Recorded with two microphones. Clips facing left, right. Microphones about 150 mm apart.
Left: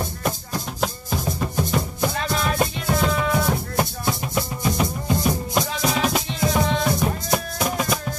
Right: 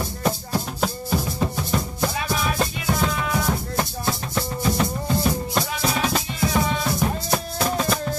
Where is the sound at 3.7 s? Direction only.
15° left (ahead or behind).